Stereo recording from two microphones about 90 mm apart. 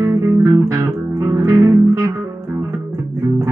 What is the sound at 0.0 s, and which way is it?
Music, 35° right (ahead or behind).